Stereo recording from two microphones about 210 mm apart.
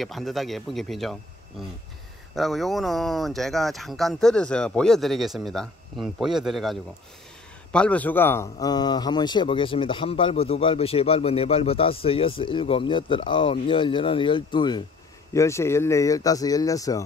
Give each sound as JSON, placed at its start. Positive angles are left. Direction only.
{"t": 0.0, "sound": "speech", "side_deg": 0}
{"t": 2.3, "sound": "a man's voice", "side_deg": 0}